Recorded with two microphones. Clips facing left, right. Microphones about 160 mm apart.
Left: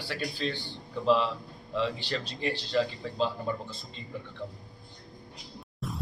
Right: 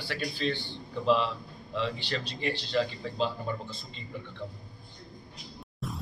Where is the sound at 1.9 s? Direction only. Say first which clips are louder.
Even; 45° left (ahead or behind).